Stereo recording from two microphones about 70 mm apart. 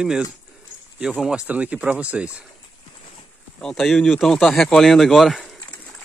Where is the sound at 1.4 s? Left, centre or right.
Right.